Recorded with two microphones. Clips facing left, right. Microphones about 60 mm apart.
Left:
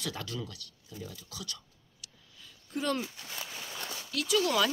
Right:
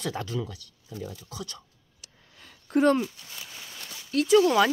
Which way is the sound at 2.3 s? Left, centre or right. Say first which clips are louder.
Right 13 dB; right.